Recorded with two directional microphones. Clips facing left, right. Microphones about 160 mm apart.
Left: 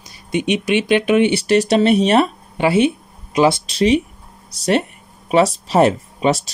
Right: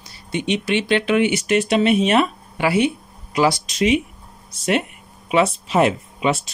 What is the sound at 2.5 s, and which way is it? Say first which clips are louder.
Speech: left 4 dB; 25° left (ahead or behind).